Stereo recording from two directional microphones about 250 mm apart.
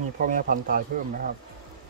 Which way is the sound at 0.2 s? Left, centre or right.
Right.